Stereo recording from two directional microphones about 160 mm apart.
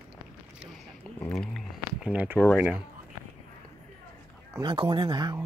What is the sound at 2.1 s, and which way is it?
Speech, 10° right (ahead or behind).